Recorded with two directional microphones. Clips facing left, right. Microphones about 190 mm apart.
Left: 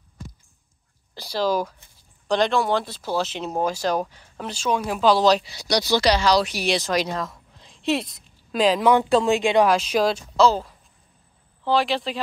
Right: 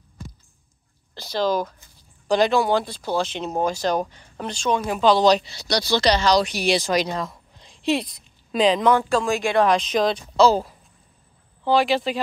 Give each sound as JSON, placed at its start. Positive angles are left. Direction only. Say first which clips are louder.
{"t": 1.1, "sound": "speech", "louder": "right 1 dB", "side_deg": 10}
{"t": 2.2, "sound": "speech", "louder": "right 2 dB", "side_deg": -5}
{"t": 8.9, "sound": "speech", "louder": "left 2 dB", "side_deg": 20}
{"t": 9.7, "sound": "speech", "louder": "even", "side_deg": 5}
{"t": 10.5, "sound": "speech", "louder": "right 4 dB", "side_deg": -10}